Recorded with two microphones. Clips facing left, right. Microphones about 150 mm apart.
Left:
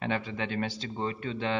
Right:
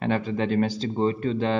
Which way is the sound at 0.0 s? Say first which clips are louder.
Right 7 dB; 40° right (ahead or behind).